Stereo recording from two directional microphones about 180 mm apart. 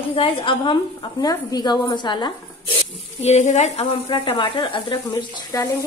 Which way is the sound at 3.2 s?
40° left (ahead or behind).